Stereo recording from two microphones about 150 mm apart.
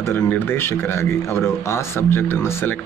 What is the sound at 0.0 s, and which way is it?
A man's voice, 15° left (ahead or behind).